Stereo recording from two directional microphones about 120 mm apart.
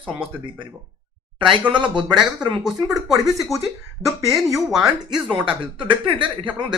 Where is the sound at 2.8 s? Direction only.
Centre (ahead or behind).